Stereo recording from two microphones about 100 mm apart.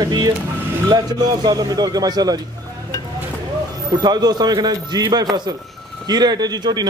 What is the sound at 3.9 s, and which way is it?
Speech, 45° right (ahead or behind).